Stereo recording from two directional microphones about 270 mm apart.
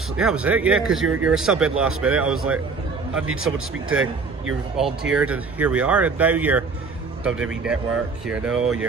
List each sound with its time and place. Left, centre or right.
0.2 s speech: centre
3.9 s speech: right
4.7 s speech: centre